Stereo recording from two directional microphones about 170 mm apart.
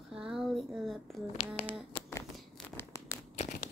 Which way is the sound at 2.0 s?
35° left (ahead or behind).